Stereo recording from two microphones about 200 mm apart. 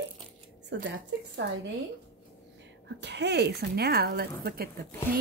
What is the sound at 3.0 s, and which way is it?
Speech, 60° right (ahead or behind).